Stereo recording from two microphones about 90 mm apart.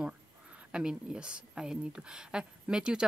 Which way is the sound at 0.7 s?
10° right (ahead or behind).